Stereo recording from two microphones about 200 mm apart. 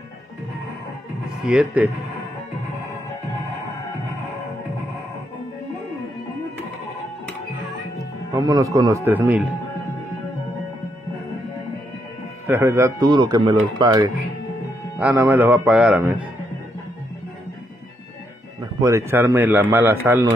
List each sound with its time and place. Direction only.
1.4 s a man's voice: 5° right (ahead or behind)
8.3 s a man's voice: 15° right (ahead or behind)
12.4 s speech: 15° right (ahead or behind)
15.0 s a man's voice: 10° right (ahead or behind)
18.8 s a man's voice: 15° right (ahead or behind)